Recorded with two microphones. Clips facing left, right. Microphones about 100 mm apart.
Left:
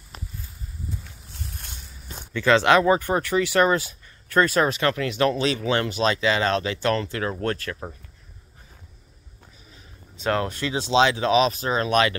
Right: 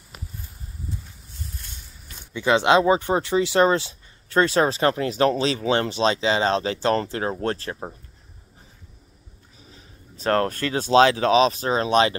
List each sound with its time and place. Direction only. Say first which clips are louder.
2.3 s speech: even; 20° right (ahead or behind)
10.1 s speech: right 3 dB; 45° right (ahead or behind); by 12.2 s 30° right (ahead or behind)